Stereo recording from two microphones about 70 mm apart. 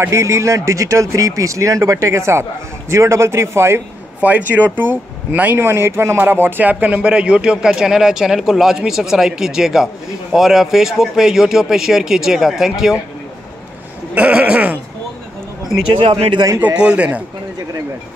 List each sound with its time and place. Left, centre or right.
0.1 s speech: right
4.2 s speech: right; by 13.0 s centre
14.1 s a sound: centre
16.7 s speech: centre